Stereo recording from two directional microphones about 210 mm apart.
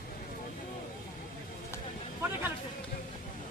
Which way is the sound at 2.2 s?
10° right (ahead or behind).